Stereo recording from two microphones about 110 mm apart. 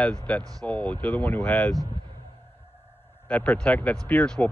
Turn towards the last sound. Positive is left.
turn(degrees=10)  # may be behind; listen again after turning